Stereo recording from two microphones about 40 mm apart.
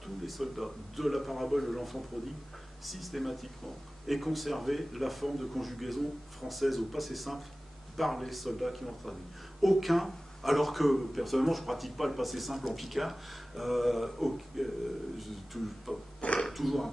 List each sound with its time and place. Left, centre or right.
0.0 s speech: centre
16.2 s speech: left
16.5 s speech: centre